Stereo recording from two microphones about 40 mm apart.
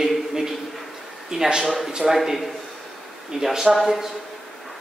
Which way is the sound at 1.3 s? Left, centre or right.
Centre.